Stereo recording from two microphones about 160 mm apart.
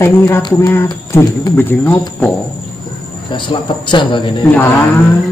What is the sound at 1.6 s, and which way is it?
Speech, 10° left (ahead or behind).